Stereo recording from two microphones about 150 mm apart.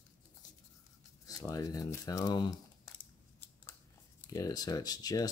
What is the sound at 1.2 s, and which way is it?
Speech, 25° left (ahead or behind).